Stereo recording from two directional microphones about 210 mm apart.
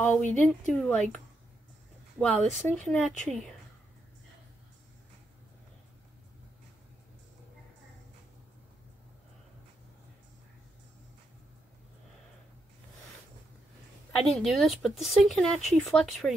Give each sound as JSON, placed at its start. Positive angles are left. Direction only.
{"t": 0.0, "sound": "a woman's voice", "side_deg": 10}
{"t": 2.1, "sound": "a woman's voice", "side_deg": 5}
{"t": 14.3, "sound": "a woman's voice", "side_deg": 0}